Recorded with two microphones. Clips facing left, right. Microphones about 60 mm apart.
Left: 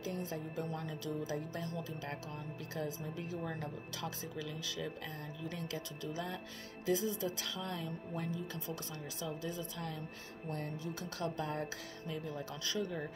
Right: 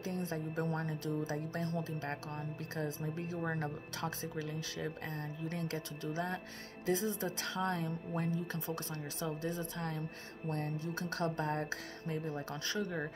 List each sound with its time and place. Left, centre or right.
0.0 s speech: right